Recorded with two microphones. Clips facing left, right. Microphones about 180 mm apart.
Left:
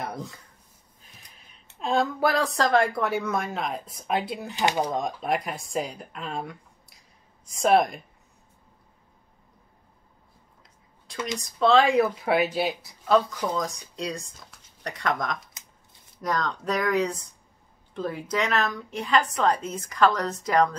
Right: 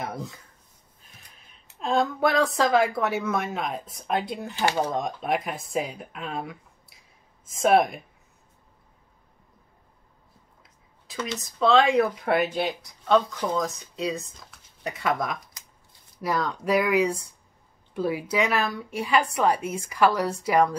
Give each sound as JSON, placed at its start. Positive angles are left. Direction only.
{"t": 0.0, "sound": "a woman's voice", "side_deg": 0}
{"t": 4.6, "sound": "speech", "side_deg": 15}
{"t": 4.9, "sound": "speech", "side_deg": 0}
{"t": 11.3, "sound": "a woman's voice", "side_deg": 0}
{"t": 15.6, "sound": "shuffling cards", "side_deg": 25}
{"t": 16.2, "sound": "a woman's voice", "side_deg": -10}